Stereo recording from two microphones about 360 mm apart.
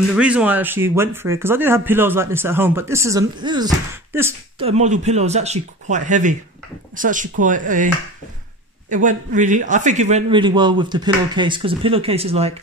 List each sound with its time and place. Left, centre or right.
0.1 s speech: centre; by 7.9 s right
8.9 s speech: right